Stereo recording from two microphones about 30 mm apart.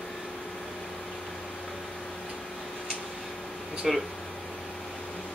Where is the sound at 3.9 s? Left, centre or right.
Centre.